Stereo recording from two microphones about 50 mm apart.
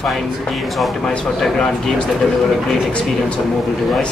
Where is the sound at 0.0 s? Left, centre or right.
Centre.